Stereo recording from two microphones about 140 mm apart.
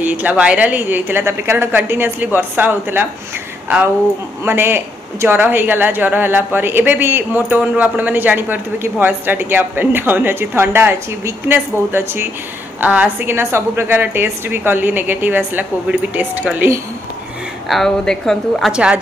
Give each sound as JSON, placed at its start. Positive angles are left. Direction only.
{"t": 0.0, "sound": "speech", "side_deg": -10}
{"t": 17.6, "sound": "a woman's voice", "side_deg": 5}